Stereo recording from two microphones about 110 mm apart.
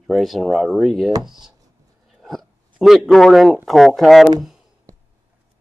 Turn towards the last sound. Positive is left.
turn(degrees=0)  # may be behind; listen again after turning